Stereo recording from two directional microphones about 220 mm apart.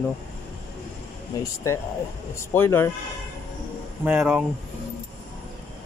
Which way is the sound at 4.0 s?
5° right (ahead or behind).